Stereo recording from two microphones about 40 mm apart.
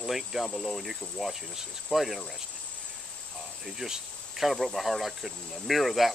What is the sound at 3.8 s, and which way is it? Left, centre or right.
Cricket, centre.